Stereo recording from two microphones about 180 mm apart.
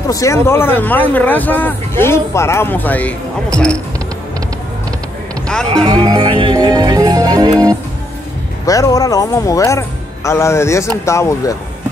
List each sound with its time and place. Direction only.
0.1 s speech: 15° left (ahead or behind)
5.9 s music: 25° right (ahead or behind)
8.6 s speech: 20° left (ahead or behind)